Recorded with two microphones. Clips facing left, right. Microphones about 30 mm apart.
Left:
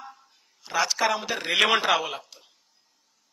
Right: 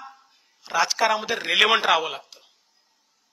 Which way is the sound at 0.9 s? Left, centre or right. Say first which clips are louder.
Right 3 dB; centre.